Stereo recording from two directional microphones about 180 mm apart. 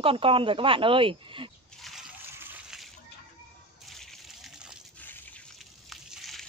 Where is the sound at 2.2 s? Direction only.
10° right (ahead or behind).